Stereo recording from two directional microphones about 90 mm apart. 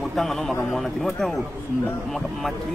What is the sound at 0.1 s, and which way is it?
Speech, 5° left (ahead or behind).